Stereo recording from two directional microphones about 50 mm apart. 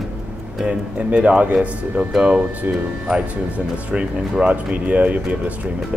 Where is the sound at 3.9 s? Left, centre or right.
Right.